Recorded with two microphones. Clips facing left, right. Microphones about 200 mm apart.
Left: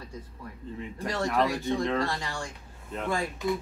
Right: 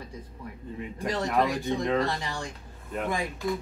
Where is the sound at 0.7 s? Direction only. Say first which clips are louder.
Right 1 dB; 15° right (ahead or behind).